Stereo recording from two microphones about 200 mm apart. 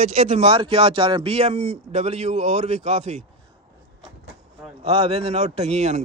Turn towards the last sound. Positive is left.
turn(degrees=-35)  # may be behind; listen again after turning